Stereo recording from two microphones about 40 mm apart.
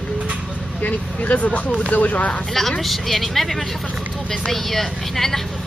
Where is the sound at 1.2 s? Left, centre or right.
Left.